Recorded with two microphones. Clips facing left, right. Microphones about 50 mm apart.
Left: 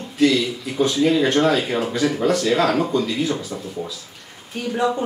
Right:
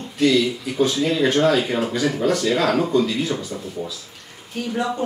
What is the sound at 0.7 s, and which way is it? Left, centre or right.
Speech, centre.